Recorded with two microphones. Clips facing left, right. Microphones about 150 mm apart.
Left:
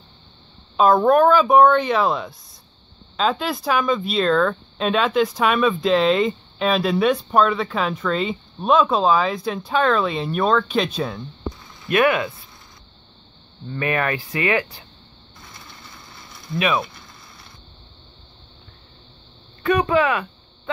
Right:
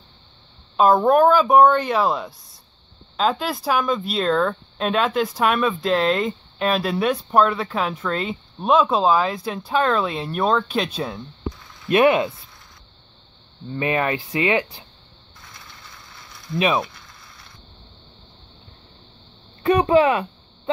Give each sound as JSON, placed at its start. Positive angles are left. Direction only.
{"t": 0.7, "sound": "speech", "side_deg": -5}
{"t": 11.9, "sound": "speech", "side_deg": -30}
{"t": 13.7, "sound": "speech", "side_deg": -20}
{"t": 16.5, "sound": "mechanisms", "side_deg": -30}
{"t": 19.6, "sound": "speech", "side_deg": -30}